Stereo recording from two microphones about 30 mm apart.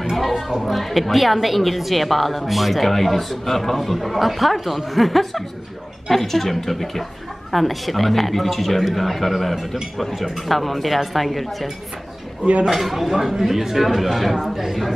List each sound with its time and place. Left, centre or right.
0.1 s a woman's voice: centre
12.6 s speech: centre